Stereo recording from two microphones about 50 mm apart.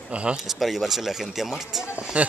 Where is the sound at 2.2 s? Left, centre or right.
Right.